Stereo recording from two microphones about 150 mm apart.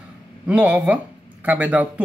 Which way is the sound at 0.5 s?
10° right (ahead or behind).